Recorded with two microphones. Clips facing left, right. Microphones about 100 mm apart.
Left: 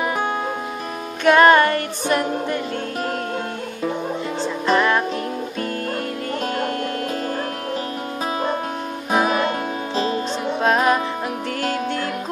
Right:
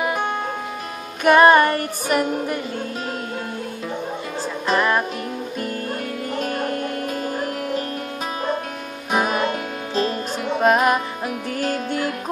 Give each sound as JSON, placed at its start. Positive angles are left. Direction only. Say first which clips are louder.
{"t": 1.2, "sound": "music", "louder": "even", "side_deg": -10}
{"t": 4.6, "sound": "music", "louder": "left 1 dB", "side_deg": -5}
{"t": 9.9, "sound": "music", "louder": "even", "side_deg": 20}
{"t": 10.6, "sound": "music", "louder": "right 1 dB", "side_deg": -5}